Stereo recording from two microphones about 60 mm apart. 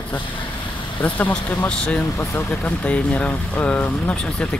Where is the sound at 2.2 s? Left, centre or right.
Left.